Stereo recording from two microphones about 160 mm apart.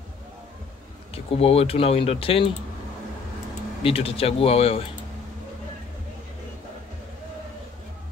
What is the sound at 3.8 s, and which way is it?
Speech, 35° left (ahead or behind).